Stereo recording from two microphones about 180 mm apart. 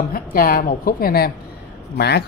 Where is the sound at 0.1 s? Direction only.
50° left (ahead or behind).